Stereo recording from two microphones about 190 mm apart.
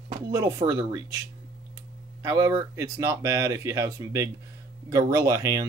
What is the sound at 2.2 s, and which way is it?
Speech, 20° right (ahead or behind).